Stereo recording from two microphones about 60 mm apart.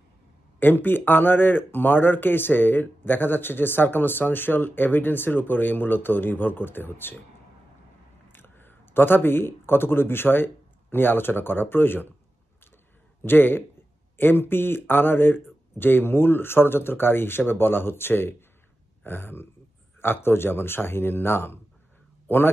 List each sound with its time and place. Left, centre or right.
0.6 s speech: left
8.3 s speech: left
13.2 s speech: left